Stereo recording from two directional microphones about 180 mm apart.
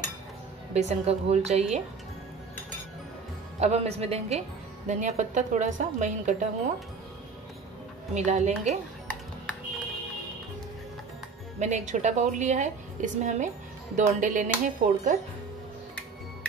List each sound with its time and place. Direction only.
0.7 s a woman's voice: 40° right (ahead or behind)
3.5 s a woman's voice: 35° right (ahead or behind)
8.1 s a woman's voice: 40° right (ahead or behind)
11.6 s a woman's voice: 40° right (ahead or behind)